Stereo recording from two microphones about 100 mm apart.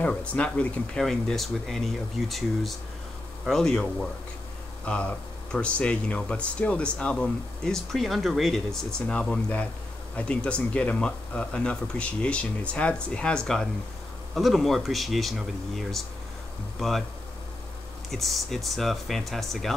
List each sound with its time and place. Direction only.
0.3 s speech: 15° left (ahead or behind)
1.0 s speech: 5° left (ahead or behind)
18.1 s speech: centre (ahead or behind)